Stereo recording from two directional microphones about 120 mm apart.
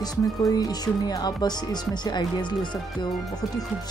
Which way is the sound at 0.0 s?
35° left (ahead or behind).